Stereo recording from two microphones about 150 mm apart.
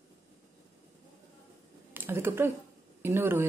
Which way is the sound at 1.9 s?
15° right (ahead or behind).